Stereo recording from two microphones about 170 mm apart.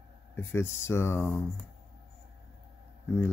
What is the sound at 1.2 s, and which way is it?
Speech, 5° left (ahead or behind).